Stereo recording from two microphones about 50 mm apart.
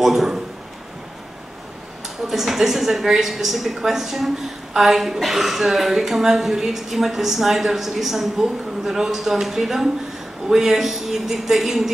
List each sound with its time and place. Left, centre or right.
0.0 s a woman's voice: centre
2.2 s a woman's voice: centre